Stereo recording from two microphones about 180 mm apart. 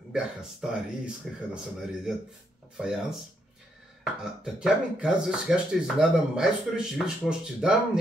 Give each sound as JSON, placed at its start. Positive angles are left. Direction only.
{"t": 0.1, "sound": "speech", "side_deg": -5}